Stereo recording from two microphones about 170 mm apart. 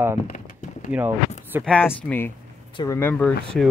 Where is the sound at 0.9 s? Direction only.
10° right (ahead or behind).